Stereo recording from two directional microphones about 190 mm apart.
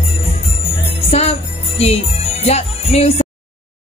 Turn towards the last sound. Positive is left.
turn(degrees=35)  # may be behind; listen again after turning